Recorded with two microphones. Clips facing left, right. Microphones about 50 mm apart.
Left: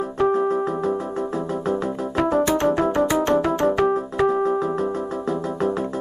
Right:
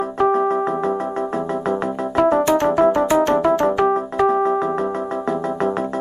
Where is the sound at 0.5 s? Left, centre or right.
Right.